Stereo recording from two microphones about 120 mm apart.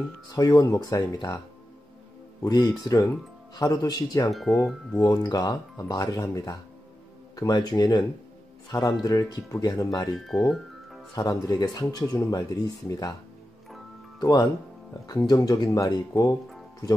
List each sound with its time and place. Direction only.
0.3 s speech: 30° left (ahead or behind)
2.4 s speech: 35° left (ahead or behind)
4.3 s speech: centre (ahead or behind)
5.1 s speech: 35° left (ahead or behind)
9.0 s speech: 30° left (ahead or behind)
10.1 s speech: centre (ahead or behind)
11.1 s speech: 30° left (ahead or behind)
14.2 s speech: 30° left (ahead or behind)